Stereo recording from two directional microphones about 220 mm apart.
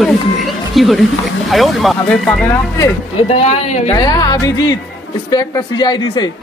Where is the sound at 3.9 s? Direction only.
15° left (ahead or behind).